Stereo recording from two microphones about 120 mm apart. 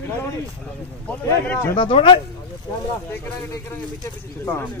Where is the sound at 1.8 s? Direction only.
45° left (ahead or behind).